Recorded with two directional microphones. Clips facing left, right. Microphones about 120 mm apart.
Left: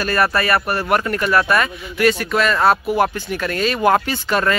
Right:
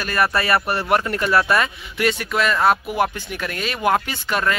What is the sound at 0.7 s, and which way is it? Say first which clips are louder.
Speech: left 1 dB; 25° right (ahead or behind).